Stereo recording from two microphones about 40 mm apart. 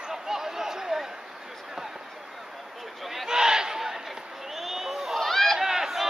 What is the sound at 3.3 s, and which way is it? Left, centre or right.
Crowd, centre.